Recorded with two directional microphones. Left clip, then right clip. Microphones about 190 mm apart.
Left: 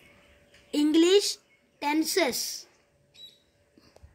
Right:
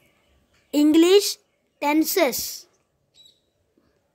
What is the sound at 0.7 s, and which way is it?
A woman's voice, 45° right (ahead or behind).